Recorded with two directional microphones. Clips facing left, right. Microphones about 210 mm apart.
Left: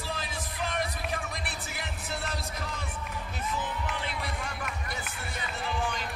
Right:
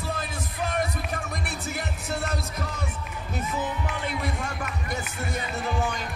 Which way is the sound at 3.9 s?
45° right (ahead or behind).